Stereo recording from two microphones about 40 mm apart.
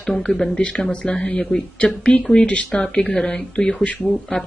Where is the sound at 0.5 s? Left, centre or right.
Left.